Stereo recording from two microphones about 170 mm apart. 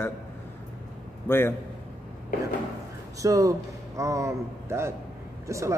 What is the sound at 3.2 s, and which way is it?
A man's voice, 20° right (ahead or behind).